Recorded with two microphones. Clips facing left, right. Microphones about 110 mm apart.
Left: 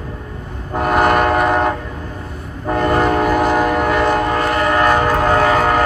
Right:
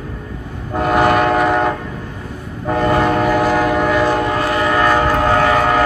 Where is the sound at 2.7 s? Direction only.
5° right (ahead or behind).